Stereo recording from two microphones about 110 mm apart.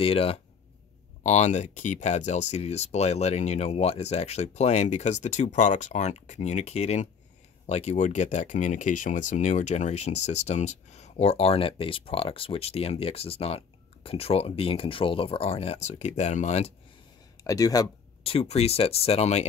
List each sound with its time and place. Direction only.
0.0 s speech: 60° left (ahead or behind)
1.2 s speech: 90° left
17.4 s speech: 30° left (ahead or behind)
18.2 s speech: 70° left (ahead or behind)